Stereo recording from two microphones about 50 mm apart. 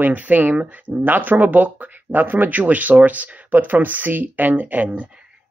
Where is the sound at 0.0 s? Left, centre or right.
Right.